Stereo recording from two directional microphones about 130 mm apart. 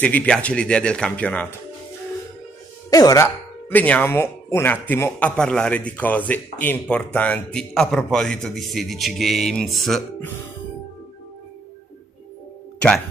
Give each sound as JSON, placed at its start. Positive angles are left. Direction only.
{"t": 0.0, "sound": "speech", "side_deg": 10}
{"t": 2.9, "sound": "speech", "side_deg": 25}
{"t": 3.7, "sound": "speech", "side_deg": 10}